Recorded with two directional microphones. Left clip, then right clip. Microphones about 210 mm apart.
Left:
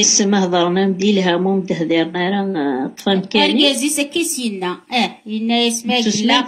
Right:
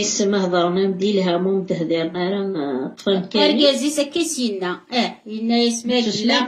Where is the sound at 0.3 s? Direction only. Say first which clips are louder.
Left 2 dB; 50° left (ahead or behind).